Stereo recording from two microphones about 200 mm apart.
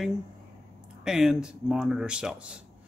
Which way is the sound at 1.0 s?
5° right (ahead or behind).